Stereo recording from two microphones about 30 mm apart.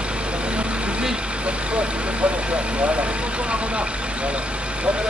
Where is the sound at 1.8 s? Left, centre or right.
Right.